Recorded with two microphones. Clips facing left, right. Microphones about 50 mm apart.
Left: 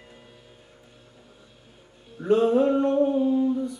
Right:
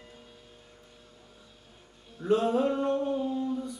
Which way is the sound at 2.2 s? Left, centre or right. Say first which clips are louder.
Left 5 dB; centre.